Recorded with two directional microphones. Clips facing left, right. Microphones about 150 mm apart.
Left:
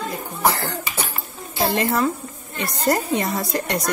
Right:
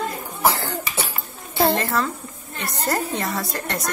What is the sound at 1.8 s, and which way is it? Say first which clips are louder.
A woman's voice: left 3 dB; 15° left (ahead or behind).